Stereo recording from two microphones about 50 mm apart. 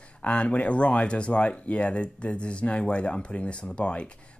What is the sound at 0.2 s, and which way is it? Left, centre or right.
Speech, left.